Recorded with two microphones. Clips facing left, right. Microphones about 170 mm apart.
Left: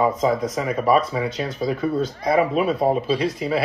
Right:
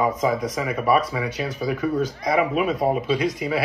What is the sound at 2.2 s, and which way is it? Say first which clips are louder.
Speech: left 3 dB; 30° left (ahead or behind).